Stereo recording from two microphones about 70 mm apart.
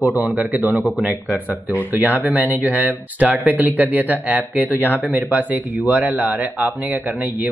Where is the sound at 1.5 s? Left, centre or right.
Right.